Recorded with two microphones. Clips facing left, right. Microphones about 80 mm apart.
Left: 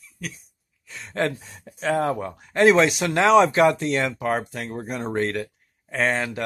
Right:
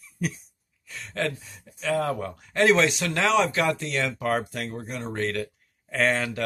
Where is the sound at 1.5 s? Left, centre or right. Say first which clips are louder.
Left 5 dB; left.